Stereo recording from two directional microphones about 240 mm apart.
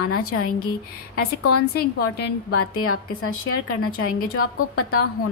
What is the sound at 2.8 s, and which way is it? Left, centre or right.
A woman's voice, left.